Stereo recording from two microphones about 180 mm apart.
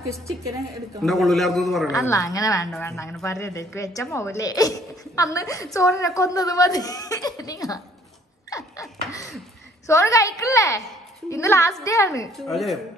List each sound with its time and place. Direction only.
1.0 s a man's voice: centre (ahead or behind)
1.9 s a woman's voice: 15° left (ahead or behind)
8.5 s a sound: 20° left (ahead or behind)
9.8 s a woman's voice: 15° left (ahead or behind)
12.4 s a man's voice: centre (ahead or behind)